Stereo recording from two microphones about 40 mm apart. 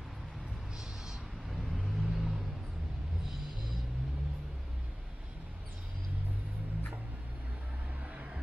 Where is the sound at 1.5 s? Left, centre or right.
Centre.